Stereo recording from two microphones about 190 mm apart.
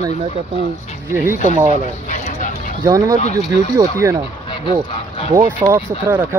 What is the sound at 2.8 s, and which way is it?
Speech, 15° right (ahead or behind).